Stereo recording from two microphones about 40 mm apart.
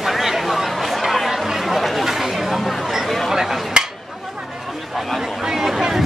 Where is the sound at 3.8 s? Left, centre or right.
Right.